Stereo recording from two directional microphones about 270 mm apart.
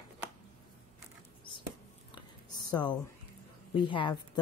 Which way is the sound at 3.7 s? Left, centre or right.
Centre.